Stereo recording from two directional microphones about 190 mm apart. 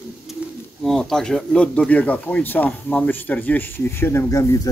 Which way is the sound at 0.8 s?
5° left (ahead or behind).